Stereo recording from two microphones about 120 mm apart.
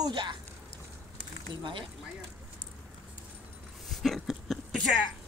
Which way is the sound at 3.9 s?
Centre (ahead or behind).